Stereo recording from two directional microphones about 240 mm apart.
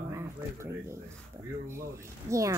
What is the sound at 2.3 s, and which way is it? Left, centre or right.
Speech, centre.